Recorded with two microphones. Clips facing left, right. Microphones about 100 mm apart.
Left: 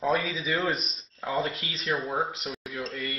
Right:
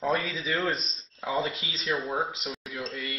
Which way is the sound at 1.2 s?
10° right (ahead or behind).